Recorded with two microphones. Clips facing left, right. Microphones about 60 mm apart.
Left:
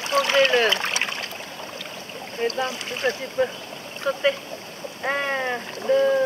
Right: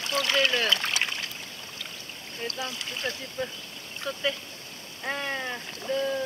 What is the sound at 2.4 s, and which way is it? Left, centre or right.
Speech, left.